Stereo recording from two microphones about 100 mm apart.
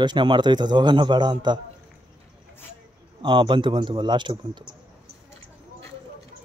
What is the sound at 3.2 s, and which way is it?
Speech, 55° right (ahead or behind).